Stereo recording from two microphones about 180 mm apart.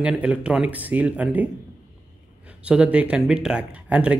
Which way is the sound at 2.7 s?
5° right (ahead or behind).